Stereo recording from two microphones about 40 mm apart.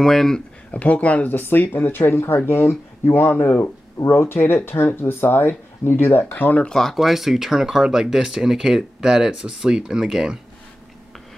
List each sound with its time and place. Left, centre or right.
0.0 s speech: centre
0.7 s speech: left
6.7 s speech: centre
7.0 s speech: centre